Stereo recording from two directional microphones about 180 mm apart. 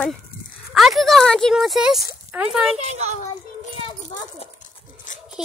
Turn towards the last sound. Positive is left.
turn(degrees=0)  # may be behind; listen again after turning